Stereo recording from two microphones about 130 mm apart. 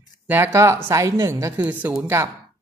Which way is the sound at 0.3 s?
20° right (ahead or behind).